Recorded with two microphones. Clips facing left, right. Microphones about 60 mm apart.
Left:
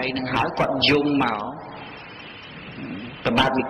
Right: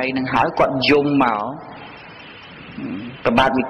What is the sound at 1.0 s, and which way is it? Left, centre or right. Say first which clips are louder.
Speech: right 5 dB; right.